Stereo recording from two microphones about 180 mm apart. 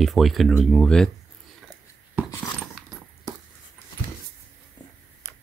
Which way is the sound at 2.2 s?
20° left (ahead or behind).